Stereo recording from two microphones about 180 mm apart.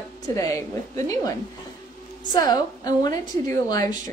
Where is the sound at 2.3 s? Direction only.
20° left (ahead or behind).